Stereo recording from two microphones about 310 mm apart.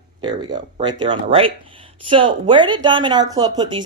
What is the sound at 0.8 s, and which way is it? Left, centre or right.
Speech, centre.